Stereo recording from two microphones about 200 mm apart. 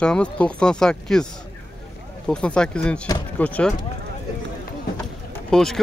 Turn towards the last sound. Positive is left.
turn(degrees=0)  # may be behind; listen again after turning